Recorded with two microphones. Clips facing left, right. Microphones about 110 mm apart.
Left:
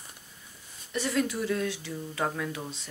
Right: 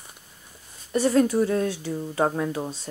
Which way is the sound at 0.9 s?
40° right (ahead or behind).